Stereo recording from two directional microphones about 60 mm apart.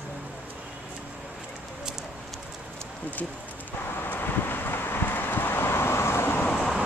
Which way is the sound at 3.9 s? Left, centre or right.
Left.